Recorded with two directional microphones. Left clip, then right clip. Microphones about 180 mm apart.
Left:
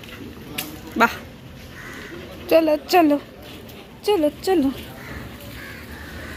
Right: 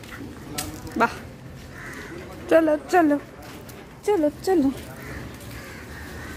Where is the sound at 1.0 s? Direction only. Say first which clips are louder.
Left 4 dB; 5° right (ahead or behind).